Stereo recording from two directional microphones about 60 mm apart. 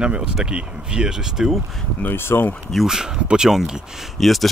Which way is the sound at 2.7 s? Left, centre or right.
Centre.